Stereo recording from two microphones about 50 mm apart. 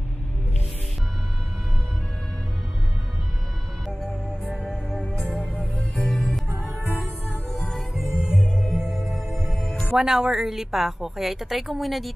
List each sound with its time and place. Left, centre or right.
5.9 s music: centre
6.7 s music: right
7.5 s music: centre
7.9 s music: centre
9.9 s a woman's voice: centre